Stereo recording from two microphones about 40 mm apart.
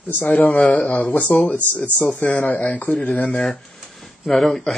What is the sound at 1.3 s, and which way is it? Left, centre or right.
Speech, left.